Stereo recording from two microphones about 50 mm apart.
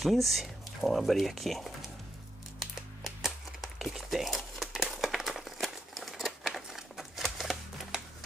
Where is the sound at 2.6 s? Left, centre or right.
Centre.